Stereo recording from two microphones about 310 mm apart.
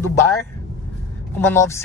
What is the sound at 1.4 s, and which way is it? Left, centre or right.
Speech, centre.